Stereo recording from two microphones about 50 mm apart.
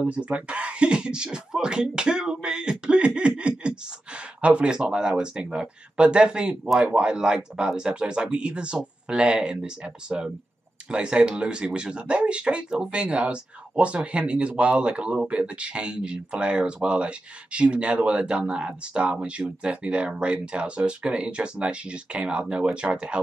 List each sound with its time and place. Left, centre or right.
0.0 s speech: right